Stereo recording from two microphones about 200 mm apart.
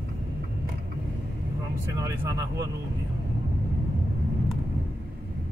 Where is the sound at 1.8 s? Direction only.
15° right (ahead or behind).